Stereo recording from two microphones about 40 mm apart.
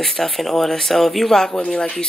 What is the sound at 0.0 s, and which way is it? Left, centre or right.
A man's voice, centre.